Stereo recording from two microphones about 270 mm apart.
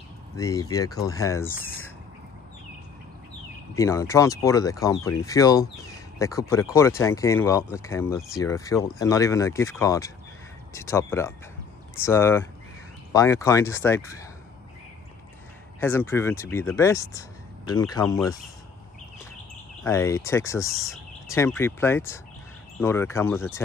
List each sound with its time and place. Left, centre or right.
0.4 s speech: centre
3.7 s speech: centre
15.8 s speech: centre
19.8 s speech: centre